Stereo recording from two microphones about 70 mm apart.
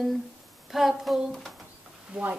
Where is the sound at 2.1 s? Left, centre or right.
Right.